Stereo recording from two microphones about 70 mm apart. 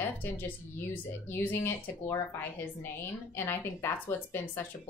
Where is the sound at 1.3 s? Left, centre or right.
Left.